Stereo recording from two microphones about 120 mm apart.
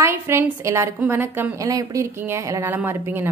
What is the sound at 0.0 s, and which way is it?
A woman's voice, 20° right (ahead or behind).